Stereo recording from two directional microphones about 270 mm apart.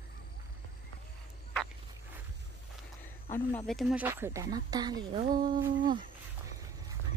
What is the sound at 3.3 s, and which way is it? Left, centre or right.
Speech, centre.